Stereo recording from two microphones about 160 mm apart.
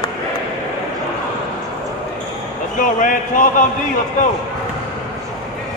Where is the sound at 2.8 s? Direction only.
55° left (ahead or behind).